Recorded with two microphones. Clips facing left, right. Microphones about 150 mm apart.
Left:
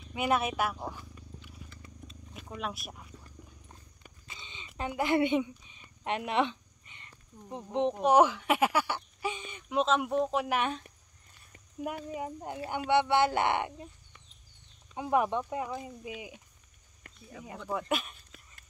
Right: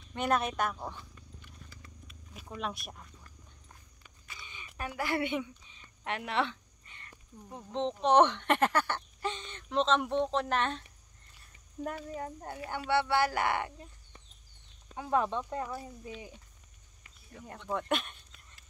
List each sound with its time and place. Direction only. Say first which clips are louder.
0.1 s purr: left 1 dB; 5° left (ahead or behind)
2.3 s speech: even; centre (ahead or behind)
4.3 s a sound: even; 20° left (ahead or behind)
4.7 s speech: left 5 dB; 20° left (ahead or behind)
8.0 s speech: even; 5° left (ahead or behind)
12.1 s speech: left 2 dB; 10° left (ahead or behind)
15.0 s speech: left 2 dB; 15° left (ahead or behind)
17.5 s speech: even; 5° left (ahead or behind)